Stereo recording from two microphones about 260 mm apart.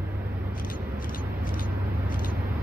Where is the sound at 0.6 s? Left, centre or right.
Left.